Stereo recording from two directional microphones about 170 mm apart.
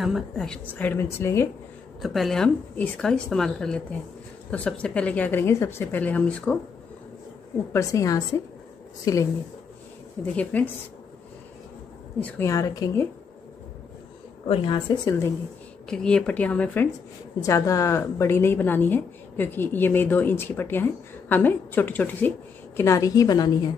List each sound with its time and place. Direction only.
0.0 s a woman's voice: centre (ahead or behind)
2.0 s a woman's voice: centre (ahead or behind)
7.7 s a woman's voice: 20° left (ahead or behind)
10.3 s a woman's voice: 10° left (ahead or behind)
12.2 s a woman's voice: 10° left (ahead or behind)
14.5 s a woman's voice: 30° left (ahead or behind)
15.0 s a woman's voice: 15° left (ahead or behind)
15.9 s a woman's voice: 5° left (ahead or behind); by 23.7 s 25° left (ahead or behind)